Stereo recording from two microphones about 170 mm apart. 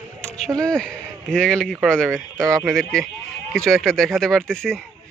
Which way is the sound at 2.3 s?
20° right (ahead or behind).